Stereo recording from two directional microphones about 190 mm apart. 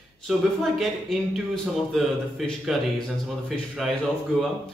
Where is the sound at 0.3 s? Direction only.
Centre (ahead or behind).